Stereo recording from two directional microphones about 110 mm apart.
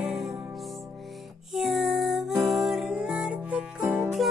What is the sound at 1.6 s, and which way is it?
Music, centre (ahead or behind).